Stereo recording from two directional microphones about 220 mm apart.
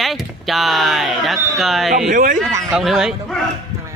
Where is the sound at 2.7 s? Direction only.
Centre (ahead or behind).